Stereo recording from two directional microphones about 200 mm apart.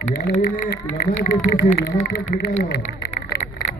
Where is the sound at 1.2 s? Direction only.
45° left (ahead or behind).